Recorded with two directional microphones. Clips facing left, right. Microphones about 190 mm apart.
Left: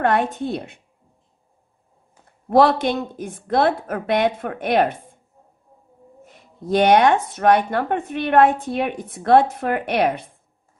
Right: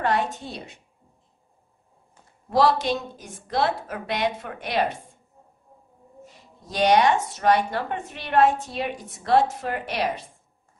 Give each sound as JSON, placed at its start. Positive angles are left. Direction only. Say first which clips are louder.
{"t": 0.0, "sound": "speech", "louder": "left 5 dB", "side_deg": 55}
{"t": 2.5, "sound": "speech", "louder": "left 5 dB", "side_deg": 55}
{"t": 6.2, "sound": "speech", "louder": "left 16 dB", "side_deg": 55}